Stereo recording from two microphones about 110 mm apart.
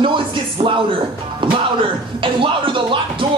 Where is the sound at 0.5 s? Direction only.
55° right (ahead or behind).